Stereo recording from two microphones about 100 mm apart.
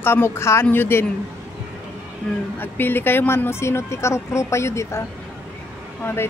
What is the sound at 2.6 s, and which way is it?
Speech, 20° left (ahead or behind).